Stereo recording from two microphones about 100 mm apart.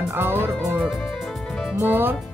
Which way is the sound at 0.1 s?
20° right (ahead or behind).